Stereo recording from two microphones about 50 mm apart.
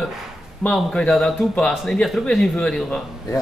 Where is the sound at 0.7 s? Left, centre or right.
Centre.